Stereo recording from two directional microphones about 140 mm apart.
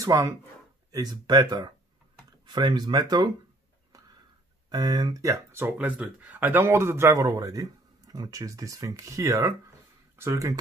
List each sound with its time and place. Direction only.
0.0 s speech: 25° right (ahead or behind)
4.6 s speech: 30° right (ahead or behind)